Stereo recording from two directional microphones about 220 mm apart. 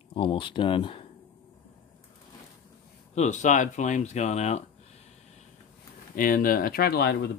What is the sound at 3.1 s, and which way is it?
Speech, 30° left (ahead or behind).